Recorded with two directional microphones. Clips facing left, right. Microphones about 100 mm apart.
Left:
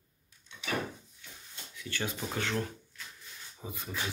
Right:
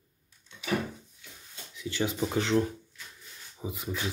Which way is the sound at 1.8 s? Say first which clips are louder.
Right 7 dB; 20° right (ahead or behind).